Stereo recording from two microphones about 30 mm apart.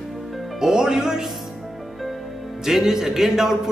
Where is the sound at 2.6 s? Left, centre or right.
Centre.